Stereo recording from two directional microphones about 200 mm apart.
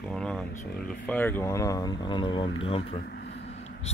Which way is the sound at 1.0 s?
10° left (ahead or behind).